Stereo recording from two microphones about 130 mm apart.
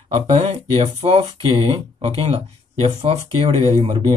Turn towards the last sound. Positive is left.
turn(degrees=-40)  # may be behind; listen again after turning